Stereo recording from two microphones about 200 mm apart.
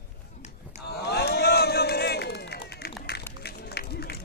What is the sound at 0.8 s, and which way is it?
Run, 55° left (ahead or behind).